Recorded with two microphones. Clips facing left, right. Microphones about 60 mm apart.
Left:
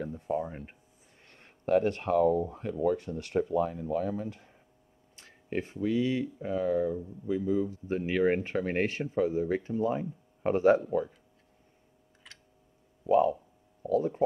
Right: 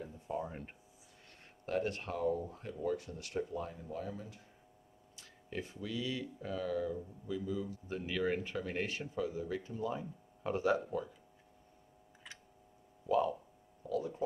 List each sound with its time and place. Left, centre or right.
0.4 s speech: centre
1.3 s a sound: left
2.0 s speech: left
2.5 s speech: left
3.4 s speech: left
5.1 s speech: left
12.2 s a sound: centre
13.8 s speech: left